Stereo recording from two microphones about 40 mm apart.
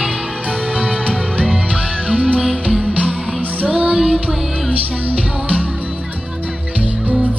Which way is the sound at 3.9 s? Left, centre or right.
Right.